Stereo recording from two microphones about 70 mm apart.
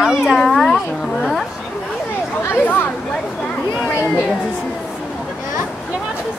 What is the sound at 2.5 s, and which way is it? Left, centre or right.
Speech, left.